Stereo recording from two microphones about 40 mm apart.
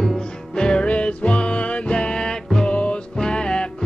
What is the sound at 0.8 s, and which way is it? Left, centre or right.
Music, left.